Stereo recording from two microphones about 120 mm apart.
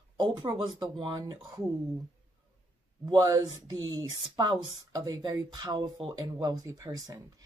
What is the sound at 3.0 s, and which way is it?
Speech, 35° right (ahead or behind).